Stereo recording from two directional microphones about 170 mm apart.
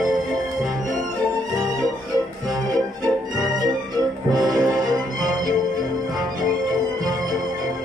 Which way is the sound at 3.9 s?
20° right (ahead or behind).